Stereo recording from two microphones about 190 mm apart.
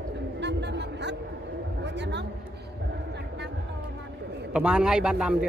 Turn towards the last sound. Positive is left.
turn(degrees=-5)  # may be behind; listen again after turning